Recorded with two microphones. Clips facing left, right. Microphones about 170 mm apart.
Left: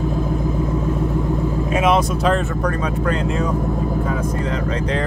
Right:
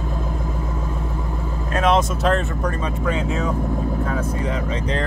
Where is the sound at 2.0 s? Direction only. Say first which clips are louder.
Left 1 dB; centre (ahead or behind).